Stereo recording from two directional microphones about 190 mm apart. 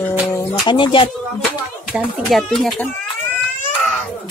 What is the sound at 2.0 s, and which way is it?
Speech, centre (ahead or behind).